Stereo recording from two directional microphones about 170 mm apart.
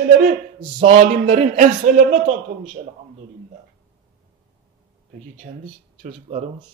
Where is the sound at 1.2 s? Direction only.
50° right (ahead or behind).